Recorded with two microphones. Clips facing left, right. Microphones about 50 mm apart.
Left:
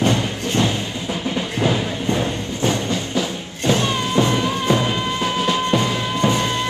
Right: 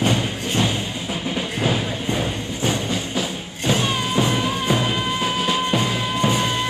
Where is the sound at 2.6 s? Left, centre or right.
Centre.